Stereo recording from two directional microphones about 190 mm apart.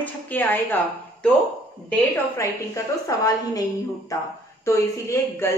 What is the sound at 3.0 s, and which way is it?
Speech, 20° left (ahead or behind).